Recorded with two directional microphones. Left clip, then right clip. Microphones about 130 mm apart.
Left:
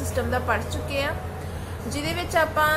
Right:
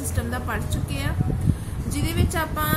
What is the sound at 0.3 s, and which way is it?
A woman's voice, 25° right (ahead or behind).